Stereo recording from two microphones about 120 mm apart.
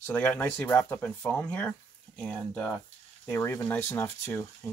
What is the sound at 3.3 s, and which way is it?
Speech, 20° left (ahead or behind).